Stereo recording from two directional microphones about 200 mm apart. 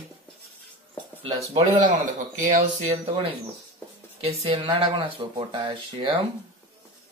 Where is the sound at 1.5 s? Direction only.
40° right (ahead or behind); by 6.2 s 25° right (ahead or behind).